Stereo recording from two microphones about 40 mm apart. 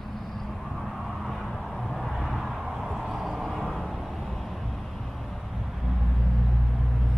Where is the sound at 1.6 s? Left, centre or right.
Centre.